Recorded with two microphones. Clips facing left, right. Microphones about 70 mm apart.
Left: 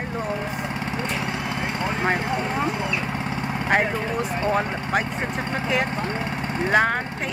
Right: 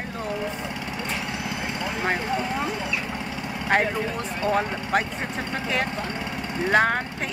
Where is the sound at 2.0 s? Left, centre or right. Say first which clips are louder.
Left 1 dB; centre.